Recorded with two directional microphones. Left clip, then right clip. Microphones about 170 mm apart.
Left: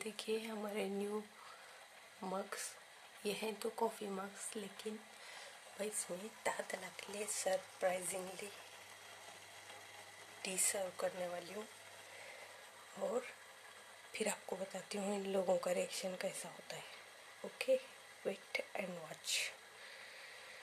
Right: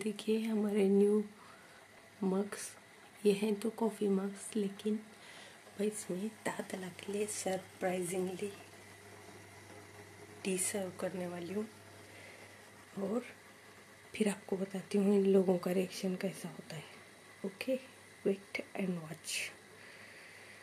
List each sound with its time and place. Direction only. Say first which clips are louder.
0.0 s speech: right 6 dB; centre (ahead or behind)
2.2 s speech: right 6 dB; centre (ahead or behind)
10.4 s speech: right 3 dB; 5° left (ahead or behind)
14.1 s speech: right 5 dB; 5° left (ahead or behind)